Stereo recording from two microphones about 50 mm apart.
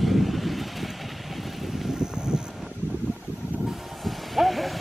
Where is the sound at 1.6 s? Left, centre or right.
Centre.